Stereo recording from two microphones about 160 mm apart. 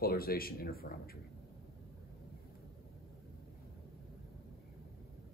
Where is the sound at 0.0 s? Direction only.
70° left (ahead or behind).